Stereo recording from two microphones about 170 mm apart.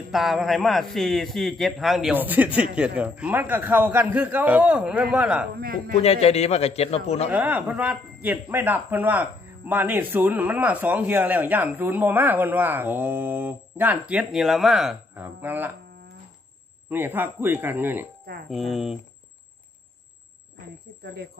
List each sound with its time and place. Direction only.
0.1 s a man's voice: centre (ahead or behind)
5.9 s a man's voice: 35° left (ahead or behind)
7.2 s a man's voice: 10° right (ahead or behind)
16.9 s a man's voice: 10° right (ahead or behind)
18.5 s speech: centre (ahead or behind)
21.0 s speech: 70° right (ahead or behind)